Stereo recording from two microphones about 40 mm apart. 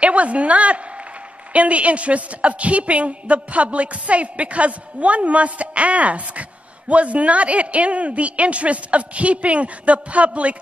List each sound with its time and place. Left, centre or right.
0.0 s a woman's voice: right